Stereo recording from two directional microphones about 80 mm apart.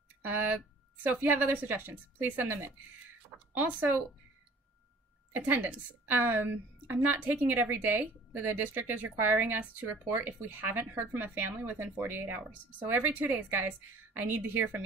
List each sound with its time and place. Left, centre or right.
1.0 s speech: right
5.3 s speech: right